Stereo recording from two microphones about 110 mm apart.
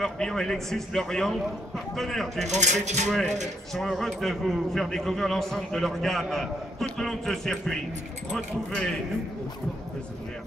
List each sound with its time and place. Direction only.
0.0 s a man's voice: 5° left (ahead or behind)
2.4 s speech: 90° right
3.1 s a man's voice: centre (ahead or behind)